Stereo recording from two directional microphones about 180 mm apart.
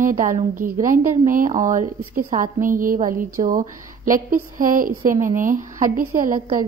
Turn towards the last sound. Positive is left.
turn(degrees=-45)  # may be behind; listen again after turning